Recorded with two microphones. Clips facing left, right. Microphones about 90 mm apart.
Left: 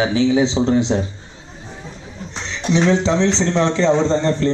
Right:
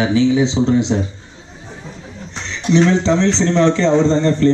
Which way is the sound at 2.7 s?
10° left (ahead or behind).